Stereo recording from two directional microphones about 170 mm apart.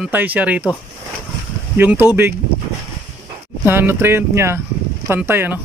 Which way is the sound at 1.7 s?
10° right (ahead or behind).